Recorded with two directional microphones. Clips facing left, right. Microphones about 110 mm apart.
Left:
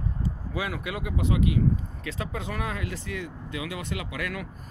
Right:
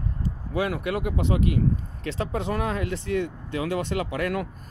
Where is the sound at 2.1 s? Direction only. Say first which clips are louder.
Right 6 dB; 30° right (ahead or behind).